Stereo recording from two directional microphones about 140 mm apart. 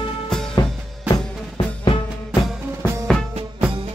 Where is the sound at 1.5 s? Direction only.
35° left (ahead or behind).